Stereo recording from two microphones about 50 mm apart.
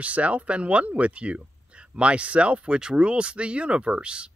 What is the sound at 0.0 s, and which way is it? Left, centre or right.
Speech, right.